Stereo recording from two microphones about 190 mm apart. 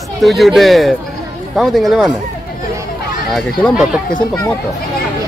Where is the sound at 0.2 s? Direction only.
Centre (ahead or behind).